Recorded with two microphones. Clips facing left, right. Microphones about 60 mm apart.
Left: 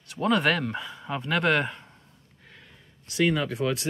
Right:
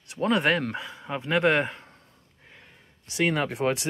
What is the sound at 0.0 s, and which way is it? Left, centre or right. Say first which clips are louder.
Speech: even; centre.